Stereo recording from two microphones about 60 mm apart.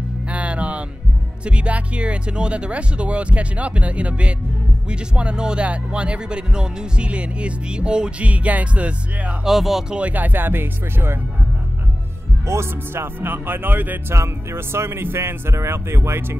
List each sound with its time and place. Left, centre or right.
0.3 s music: right
1.4 s speech: centre
9.4 s speech: centre
9.9 s speech: right
12.4 s speech: right
14.1 s speech: right